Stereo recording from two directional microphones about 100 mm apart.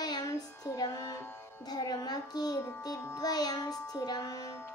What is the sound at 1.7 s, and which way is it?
A child's voice, 40° left (ahead or behind).